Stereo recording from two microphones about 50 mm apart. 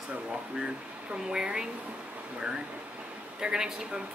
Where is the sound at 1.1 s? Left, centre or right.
Centre.